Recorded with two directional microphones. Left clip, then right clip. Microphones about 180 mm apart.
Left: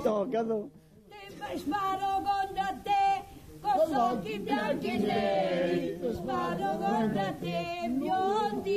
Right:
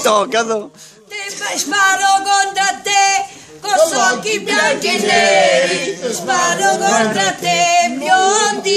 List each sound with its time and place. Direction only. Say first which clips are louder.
0.0 s a capella: right 15 dB; 15° right (ahead or behind)
4.2 s a capella: right 17 dB; 10° right (ahead or behind)